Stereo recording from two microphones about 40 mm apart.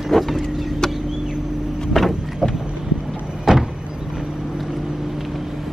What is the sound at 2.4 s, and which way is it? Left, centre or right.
Boat, centre.